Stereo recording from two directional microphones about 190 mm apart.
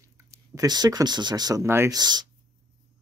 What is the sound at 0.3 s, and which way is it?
Speech, 20° right (ahead or behind).